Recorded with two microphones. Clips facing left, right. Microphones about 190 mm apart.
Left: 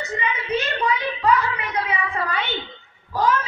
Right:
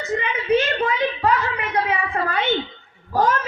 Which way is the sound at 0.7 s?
50° right (ahead or behind).